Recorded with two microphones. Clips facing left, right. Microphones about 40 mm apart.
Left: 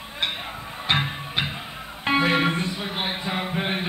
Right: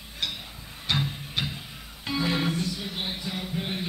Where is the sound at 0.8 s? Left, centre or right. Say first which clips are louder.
Left 5 dB; left.